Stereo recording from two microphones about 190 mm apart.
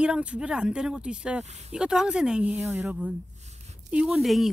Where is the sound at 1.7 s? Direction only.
5° right (ahead or behind).